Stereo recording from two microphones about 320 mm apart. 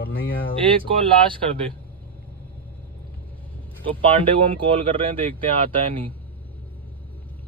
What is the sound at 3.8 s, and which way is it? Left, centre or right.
Speech, centre.